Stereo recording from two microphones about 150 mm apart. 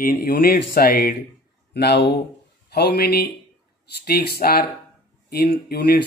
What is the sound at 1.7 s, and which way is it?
Speech, 90° left.